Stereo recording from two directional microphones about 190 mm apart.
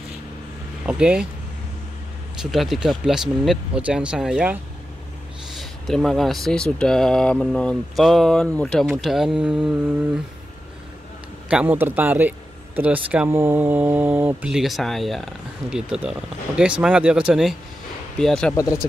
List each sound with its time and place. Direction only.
0.8 s speech: 5° right (ahead or behind)
2.4 s speech: centre (ahead or behind)
5.6 s speech: centre (ahead or behind)
11.4 s speech: 5° right (ahead or behind)
18.5 s speech: 15° left (ahead or behind)